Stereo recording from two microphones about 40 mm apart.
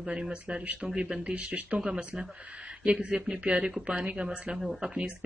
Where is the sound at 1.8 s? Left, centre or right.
Centre.